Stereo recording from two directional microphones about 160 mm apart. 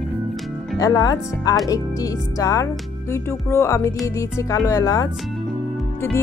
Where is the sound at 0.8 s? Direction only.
25° left (ahead or behind).